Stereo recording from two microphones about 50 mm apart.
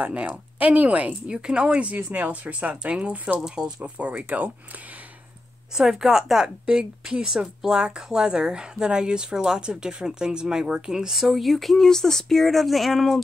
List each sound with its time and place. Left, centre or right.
0.0 s speech: right
3.3 s speech: centre; by 4.5 s right
5.8 s a woman's voice: centre